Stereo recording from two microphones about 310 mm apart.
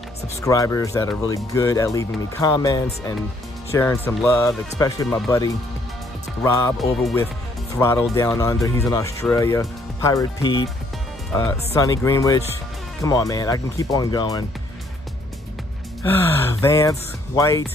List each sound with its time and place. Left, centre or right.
0.4 s speech: centre
16.0 s speech: centre